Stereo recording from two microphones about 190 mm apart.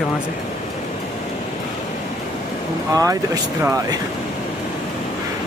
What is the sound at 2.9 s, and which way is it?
Speech, 15° right (ahead or behind).